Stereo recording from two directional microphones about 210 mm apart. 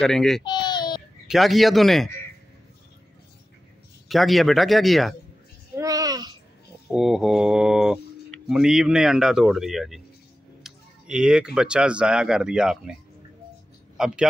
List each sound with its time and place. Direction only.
0.0 s speech: centre (ahead or behind)
0.4 s baby cry: 20° left (ahead or behind)
1.2 s speech: centre (ahead or behind)
4.1 s speech: centre (ahead or behind)
5.8 s a sound: 15° right (ahead or behind)
6.9 s speech: centre (ahead or behind)
13.9 s a man's voice: 5° right (ahead or behind)